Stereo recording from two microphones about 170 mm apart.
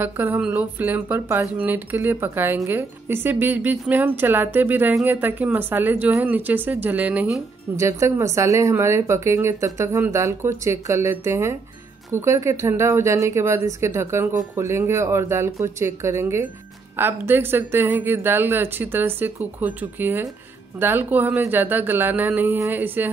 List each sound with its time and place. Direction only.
0.0 s speech: 10° right (ahead or behind)
7.7 s speech: 15° right (ahead or behind)